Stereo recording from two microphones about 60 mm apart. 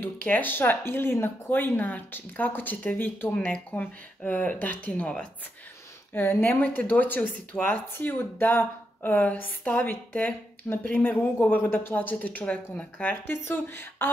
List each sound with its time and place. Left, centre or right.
0.0 s speech: left
1.8 s speech: left
6.1 s speech: left
13.3 s speech: left